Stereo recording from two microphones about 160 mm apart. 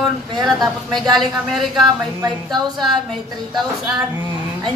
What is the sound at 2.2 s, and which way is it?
Speech, 25° right (ahead or behind).